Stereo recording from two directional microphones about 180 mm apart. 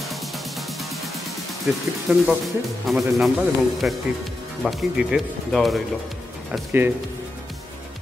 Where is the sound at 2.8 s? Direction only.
Centre (ahead or behind).